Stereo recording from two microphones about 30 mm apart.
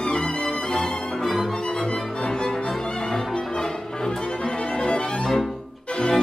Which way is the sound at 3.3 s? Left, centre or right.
Left.